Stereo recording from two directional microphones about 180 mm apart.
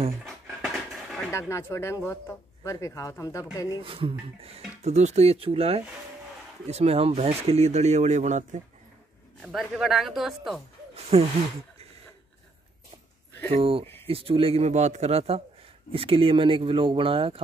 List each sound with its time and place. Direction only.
0.2 s dog: centre (ahead or behind)
1.3 s speech: 15° left (ahead or behind)
3.8 s speech: 30° right (ahead or behind)
9.4 s speech: centre (ahead or behind)
11.0 s speech: 35° right (ahead or behind)
13.5 s speech: 30° right (ahead or behind)